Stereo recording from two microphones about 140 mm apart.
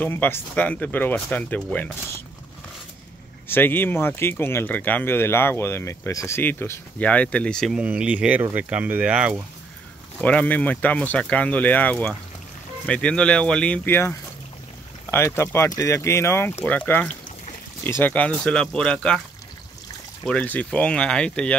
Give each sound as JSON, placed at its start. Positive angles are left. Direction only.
{"t": 0.0, "sound": "speech", "side_deg": 15}
{"t": 3.4, "sound": "speech", "side_deg": 15}
{"t": 10.2, "sound": "speech", "side_deg": 10}
{"t": 20.2, "sound": "speech", "side_deg": 10}